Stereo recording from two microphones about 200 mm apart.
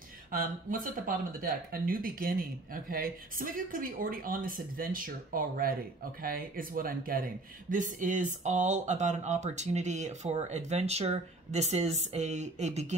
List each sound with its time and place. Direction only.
0.3 s speech: 45° right (ahead or behind)